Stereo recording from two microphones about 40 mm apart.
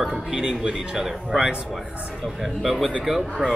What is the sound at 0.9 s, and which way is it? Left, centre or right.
Speech, centre.